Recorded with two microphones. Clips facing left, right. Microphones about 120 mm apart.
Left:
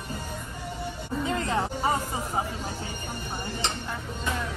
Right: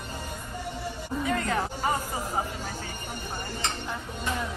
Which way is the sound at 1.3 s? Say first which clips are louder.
Even; 25° left (ahead or behind).